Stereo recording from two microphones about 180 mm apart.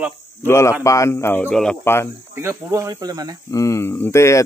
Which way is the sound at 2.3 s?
15° right (ahead or behind).